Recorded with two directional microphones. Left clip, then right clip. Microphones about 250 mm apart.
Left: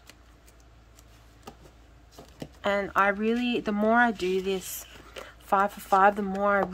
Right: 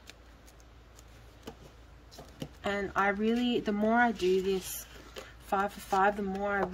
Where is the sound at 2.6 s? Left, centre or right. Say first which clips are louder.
Left 6 dB; centre.